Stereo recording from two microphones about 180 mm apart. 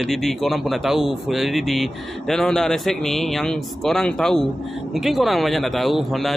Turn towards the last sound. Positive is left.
turn(degrees=0)  # may be behind; listen again after turning